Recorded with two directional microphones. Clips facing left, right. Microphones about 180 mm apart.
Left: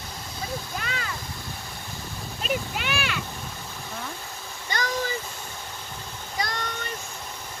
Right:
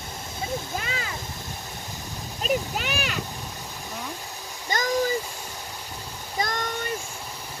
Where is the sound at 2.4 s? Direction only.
40° right (ahead or behind).